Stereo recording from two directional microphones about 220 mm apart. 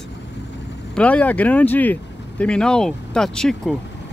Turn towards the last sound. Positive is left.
turn(degrees=0)  # may be behind; listen again after turning